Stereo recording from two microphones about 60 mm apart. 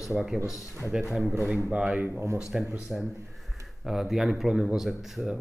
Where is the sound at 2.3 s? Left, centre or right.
Centre.